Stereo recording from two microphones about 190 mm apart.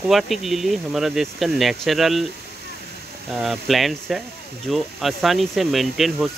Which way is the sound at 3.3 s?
Centre (ahead or behind).